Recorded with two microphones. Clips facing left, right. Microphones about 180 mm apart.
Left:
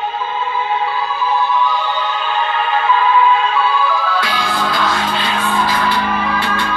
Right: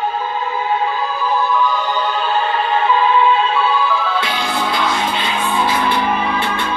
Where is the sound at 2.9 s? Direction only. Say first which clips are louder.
Left 1 dB; 25° right (ahead or behind).